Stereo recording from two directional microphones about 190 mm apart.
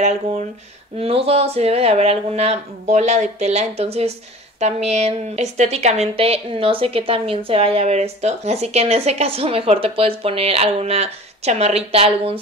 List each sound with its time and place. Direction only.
0.9 s speech: 30° right (ahead or behind)